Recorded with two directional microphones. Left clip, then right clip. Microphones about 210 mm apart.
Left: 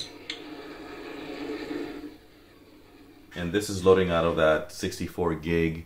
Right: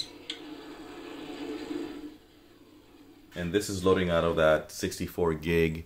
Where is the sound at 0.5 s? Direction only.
10° left (ahead or behind).